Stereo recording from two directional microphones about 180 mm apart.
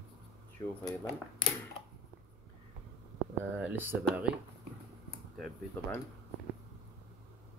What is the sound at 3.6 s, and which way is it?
Speech, 10° right (ahead or behind).